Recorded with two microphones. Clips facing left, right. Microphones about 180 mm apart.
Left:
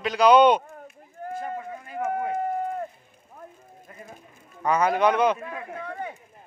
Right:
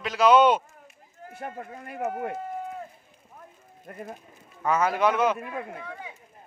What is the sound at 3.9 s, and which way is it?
Speech, 55° right (ahead or behind).